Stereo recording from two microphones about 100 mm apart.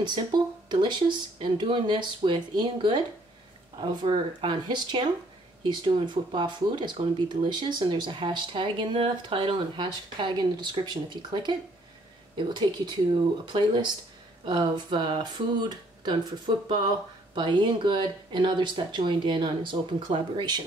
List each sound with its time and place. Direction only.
0.0 s speech: 50° right (ahead or behind)